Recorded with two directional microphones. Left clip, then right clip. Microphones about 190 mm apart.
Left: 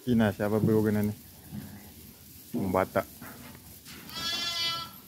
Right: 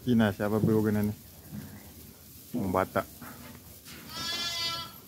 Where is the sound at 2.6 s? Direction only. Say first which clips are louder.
Left 1 dB; centre (ahead or behind).